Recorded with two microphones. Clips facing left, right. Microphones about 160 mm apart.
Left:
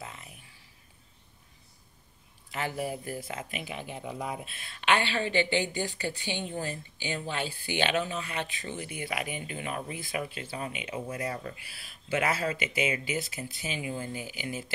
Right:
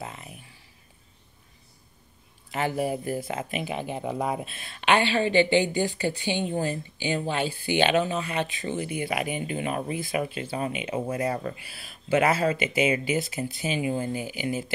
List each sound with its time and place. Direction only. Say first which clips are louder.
2.5 s speech: right 6 dB; 20° right (ahead or behind)
3.6 s speech: right 7 dB; 70° right (ahead or behind)
4.5 s speech: right 1 dB; 25° right (ahead or behind)